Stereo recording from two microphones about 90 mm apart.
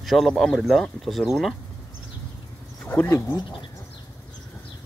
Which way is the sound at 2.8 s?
15° left (ahead or behind).